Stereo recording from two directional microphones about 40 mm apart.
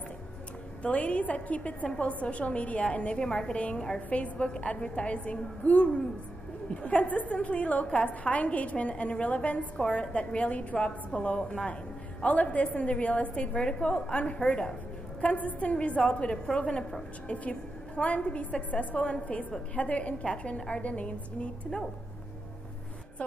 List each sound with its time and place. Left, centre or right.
0.8 s a woman's voice: left
13.5 s a woman's voice: left
15.1 s a woman's voice: left